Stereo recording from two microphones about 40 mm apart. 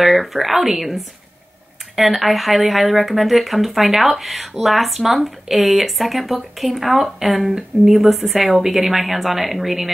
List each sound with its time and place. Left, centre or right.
0.0 s speech: centre